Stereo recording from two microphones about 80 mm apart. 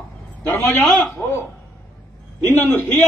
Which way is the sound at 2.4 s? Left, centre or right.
Left.